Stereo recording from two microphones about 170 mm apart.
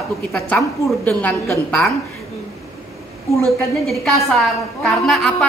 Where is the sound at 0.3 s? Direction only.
Centre (ahead or behind).